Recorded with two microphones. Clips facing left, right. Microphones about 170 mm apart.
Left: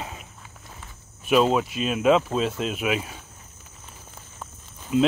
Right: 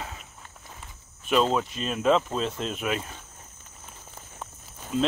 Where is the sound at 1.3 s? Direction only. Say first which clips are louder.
Left 4 dB; 10° left (ahead or behind).